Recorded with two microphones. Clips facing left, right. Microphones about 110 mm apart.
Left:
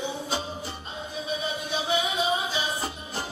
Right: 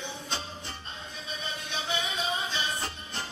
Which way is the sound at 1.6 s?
10° left (ahead or behind).